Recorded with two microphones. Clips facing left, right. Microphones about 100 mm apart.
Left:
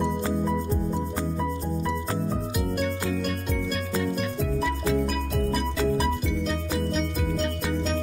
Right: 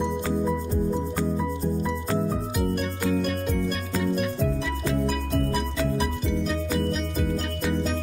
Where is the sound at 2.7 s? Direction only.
Centre (ahead or behind).